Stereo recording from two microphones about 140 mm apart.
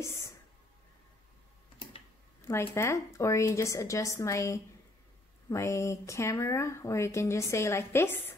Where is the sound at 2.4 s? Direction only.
20° left (ahead or behind).